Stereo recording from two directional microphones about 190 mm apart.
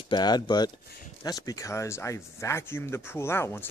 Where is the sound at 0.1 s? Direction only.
20° left (ahead or behind).